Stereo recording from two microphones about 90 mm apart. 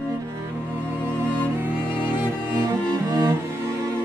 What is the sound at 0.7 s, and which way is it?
Music, 20° right (ahead or behind).